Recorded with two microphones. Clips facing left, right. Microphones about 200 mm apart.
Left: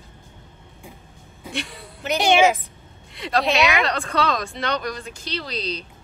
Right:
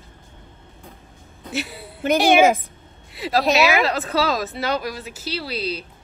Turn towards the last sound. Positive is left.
turn(degrees=-5)  # may be behind; listen again after turning